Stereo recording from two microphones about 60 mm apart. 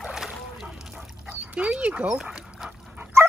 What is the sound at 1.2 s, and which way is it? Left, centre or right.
Dog, right.